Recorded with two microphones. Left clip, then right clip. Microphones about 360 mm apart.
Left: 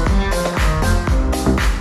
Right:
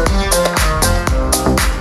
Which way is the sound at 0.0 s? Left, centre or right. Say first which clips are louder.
Right 5 dB; right.